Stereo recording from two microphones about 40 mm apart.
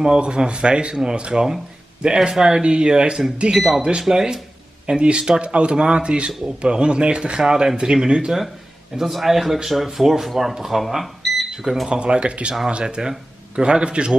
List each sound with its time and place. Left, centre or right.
0.0 s a man's voice: right
3.5 s a man's voice: centre
8.9 s speech: centre
10.9 s cash register: centre
11.5 s speech: centre
11.9 s a man's voice: right